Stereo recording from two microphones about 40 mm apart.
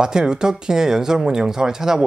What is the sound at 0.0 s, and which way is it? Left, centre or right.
Speech, centre.